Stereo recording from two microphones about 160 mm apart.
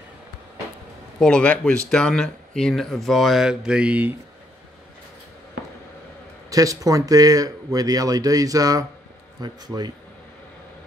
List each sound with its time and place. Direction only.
1.2 s speech: 5° left (ahead or behind)
6.5 s speech: 20° right (ahead or behind)